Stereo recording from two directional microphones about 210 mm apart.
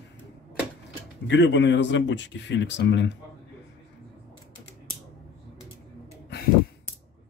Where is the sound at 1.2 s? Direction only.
60° left (ahead or behind).